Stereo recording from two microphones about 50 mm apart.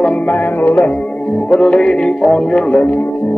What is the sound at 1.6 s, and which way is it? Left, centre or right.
Music, left.